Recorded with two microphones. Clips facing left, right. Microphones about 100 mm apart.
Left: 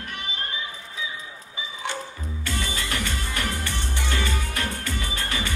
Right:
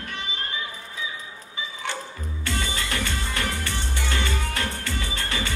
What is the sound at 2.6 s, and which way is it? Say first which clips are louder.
Music: even; 25° right (ahead or behind).